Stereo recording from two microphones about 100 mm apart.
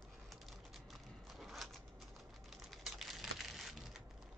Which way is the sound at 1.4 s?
Centre (ahead or behind).